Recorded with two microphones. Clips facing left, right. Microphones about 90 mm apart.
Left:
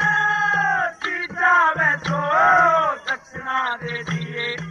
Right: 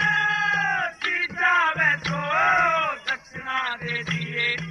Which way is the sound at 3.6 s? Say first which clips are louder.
Left 4 dB; 35° left (ahead or behind).